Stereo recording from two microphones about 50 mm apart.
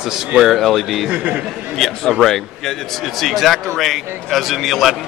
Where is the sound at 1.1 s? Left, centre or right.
Right.